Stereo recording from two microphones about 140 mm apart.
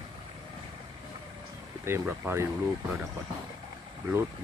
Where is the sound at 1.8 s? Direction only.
15° right (ahead or behind).